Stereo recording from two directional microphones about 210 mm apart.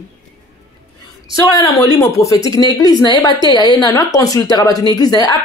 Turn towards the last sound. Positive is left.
turn(degrees=20)  # may be behind; listen again after turning